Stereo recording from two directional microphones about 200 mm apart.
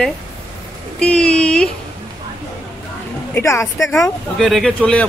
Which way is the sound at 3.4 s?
15° left (ahead or behind).